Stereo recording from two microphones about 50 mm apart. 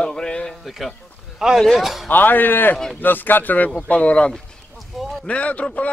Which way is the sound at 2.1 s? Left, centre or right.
Left.